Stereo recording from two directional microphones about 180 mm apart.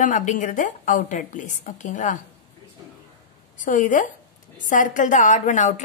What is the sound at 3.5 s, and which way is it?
A woman's voice, 45° left (ahead or behind).